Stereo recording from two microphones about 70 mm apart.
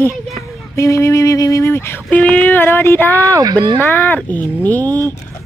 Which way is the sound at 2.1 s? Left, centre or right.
Left.